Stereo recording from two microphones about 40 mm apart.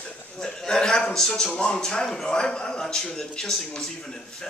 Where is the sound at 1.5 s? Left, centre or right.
Left.